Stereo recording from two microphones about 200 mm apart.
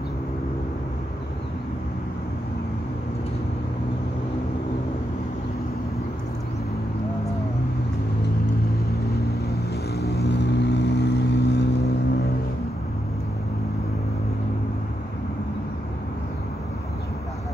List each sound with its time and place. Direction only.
9.9 s vehicle: 55° left (ahead or behind)